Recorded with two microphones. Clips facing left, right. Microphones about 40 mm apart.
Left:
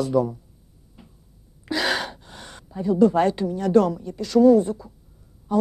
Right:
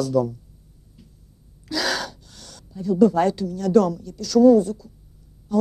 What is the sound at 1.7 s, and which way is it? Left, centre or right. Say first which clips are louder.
Speech: left 1 dB; left.